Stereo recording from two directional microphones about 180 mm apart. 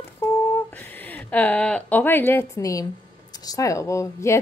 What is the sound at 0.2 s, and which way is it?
Humming, 10° left (ahead or behind).